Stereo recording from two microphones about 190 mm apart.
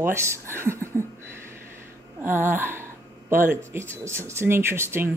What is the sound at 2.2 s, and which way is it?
Speech, 10° right (ahead or behind).